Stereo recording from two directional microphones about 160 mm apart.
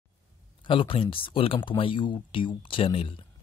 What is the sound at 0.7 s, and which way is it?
Speech, 35° left (ahead or behind).